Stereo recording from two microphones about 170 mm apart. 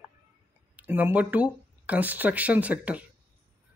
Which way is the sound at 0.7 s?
10° right (ahead or behind).